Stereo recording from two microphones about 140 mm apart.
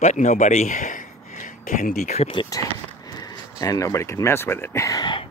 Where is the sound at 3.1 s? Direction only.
25° left (ahead or behind).